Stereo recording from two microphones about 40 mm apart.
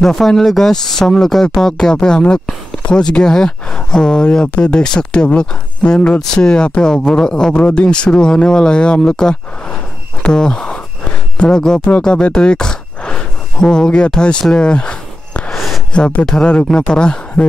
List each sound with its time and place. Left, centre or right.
0.0 s speech: centre; by 15.0 s left
15.5 s a sound: centre
16.3 s speech: left